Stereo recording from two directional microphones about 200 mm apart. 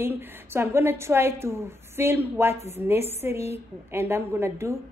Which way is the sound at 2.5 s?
35° left (ahead or behind).